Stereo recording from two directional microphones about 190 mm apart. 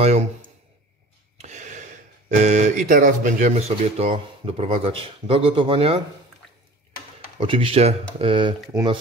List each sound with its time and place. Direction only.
0.0 s speech: 35° right (ahead or behind)
7.3 s speech: 25° right (ahead or behind)